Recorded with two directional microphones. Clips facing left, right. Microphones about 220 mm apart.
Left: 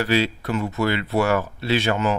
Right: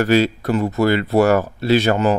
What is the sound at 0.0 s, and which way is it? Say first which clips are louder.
Speech: right 6 dB; 45° right (ahead or behind).